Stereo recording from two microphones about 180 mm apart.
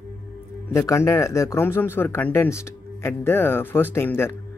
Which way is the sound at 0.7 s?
15° left (ahead or behind).